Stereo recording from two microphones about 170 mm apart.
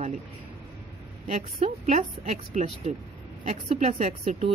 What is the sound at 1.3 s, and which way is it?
A woman's voice, 40° right (ahead or behind).